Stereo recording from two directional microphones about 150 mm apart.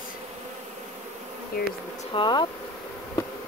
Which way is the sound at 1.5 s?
85° left.